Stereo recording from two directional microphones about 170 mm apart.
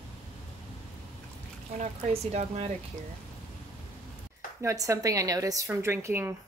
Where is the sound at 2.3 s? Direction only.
40° right (ahead or behind).